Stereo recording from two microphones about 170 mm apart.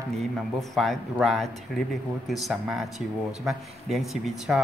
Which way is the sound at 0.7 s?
Centre (ahead or behind).